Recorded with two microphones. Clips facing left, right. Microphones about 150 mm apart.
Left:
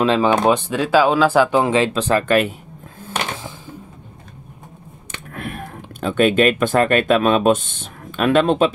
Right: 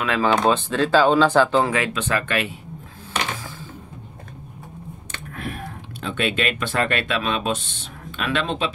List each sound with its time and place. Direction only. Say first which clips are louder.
0.0 s speech: left 6 dB; 25° left (ahead or behind)
0.5 s speech: left 2 dB; 10° left (ahead or behind)
1.7 s speech: left 6 dB; 30° left (ahead or behind)
5.3 s speech: left 2 dB; 55° left (ahead or behind)